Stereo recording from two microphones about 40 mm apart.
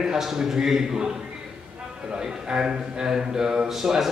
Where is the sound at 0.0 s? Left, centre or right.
Centre.